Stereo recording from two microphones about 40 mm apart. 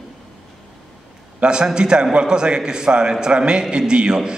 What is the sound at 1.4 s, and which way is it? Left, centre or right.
A man's voice, right.